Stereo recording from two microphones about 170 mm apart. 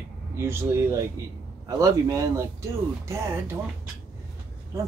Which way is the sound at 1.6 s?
20° right (ahead or behind).